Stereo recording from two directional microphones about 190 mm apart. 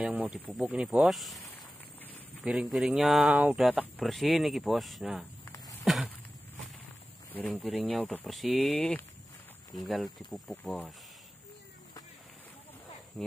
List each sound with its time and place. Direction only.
0.0 s speech: 5° right (ahead or behind)
2.4 s speech: 5° right (ahead or behind)
5.9 s a sound: centre (ahead or behind)
7.6 s speech: centre (ahead or behind)